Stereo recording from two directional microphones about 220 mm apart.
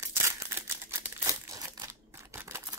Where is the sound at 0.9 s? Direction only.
15° right (ahead or behind).